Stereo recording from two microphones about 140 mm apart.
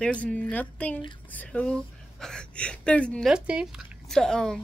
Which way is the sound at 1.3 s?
10° left (ahead or behind).